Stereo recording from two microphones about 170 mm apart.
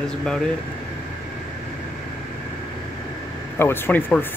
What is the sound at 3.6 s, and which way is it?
Speech, 10° left (ahead or behind).